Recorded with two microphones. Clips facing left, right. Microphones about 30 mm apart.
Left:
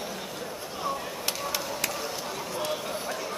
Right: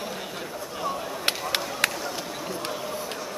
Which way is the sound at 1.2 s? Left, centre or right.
Right.